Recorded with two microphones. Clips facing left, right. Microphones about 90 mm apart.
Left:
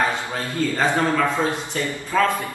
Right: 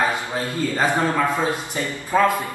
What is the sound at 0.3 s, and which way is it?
A man's voice, 20° right (ahead or behind).